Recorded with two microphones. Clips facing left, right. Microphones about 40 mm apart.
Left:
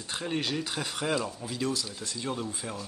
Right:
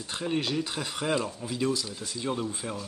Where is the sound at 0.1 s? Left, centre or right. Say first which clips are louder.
Right 2 dB; centre.